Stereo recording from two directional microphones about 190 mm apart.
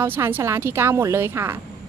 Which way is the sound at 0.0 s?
10° right (ahead or behind).